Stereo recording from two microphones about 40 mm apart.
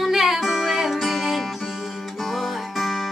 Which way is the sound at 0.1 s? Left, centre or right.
Centre.